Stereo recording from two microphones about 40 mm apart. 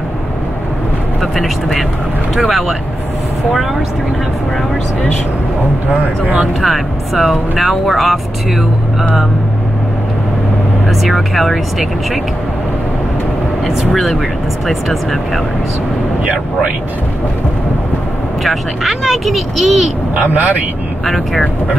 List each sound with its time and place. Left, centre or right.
1.2 s speech: centre
6.2 s speech: right
6.6 s speech: centre
10.9 s speech: centre
13.7 s speech: centre
18.4 s speech: centre
20.2 s speech: right
21.0 s speech: centre